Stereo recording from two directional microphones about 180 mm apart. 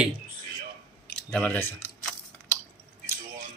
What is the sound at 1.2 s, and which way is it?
Speech, 5° left (ahead or behind).